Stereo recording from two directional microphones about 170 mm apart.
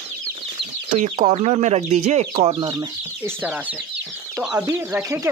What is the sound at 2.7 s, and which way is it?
Speech, 20° right (ahead or behind).